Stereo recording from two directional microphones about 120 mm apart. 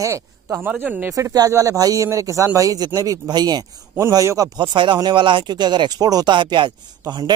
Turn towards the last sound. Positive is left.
turn(degrees=-35)  # may be behind; listen again after turning